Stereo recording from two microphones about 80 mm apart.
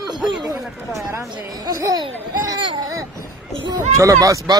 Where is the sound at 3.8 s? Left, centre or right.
Right.